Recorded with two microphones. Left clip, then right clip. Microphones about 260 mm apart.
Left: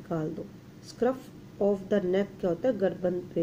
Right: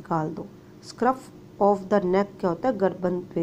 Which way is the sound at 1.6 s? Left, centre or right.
Centre.